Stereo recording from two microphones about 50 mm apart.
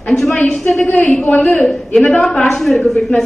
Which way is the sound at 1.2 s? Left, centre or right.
Left.